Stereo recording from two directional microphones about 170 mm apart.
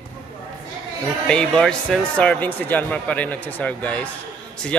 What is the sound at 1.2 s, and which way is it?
Speech, 5° left (ahead or behind).